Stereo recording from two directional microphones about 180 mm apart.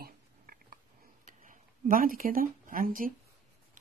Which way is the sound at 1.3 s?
45° right (ahead or behind).